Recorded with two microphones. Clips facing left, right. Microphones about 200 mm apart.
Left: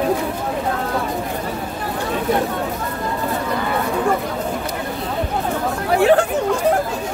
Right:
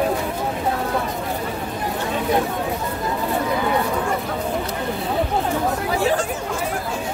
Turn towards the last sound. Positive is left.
turn(degrees=60)  # may be behind; listen again after turning